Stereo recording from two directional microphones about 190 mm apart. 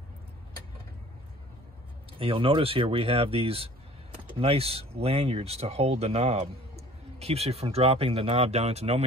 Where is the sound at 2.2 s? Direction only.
30° right (ahead or behind).